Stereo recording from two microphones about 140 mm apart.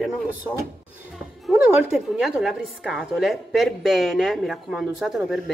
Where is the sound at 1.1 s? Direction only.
5° right (ahead or behind).